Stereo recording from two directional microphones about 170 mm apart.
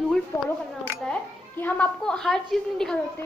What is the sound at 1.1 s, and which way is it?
A child's voice, 10° left (ahead or behind).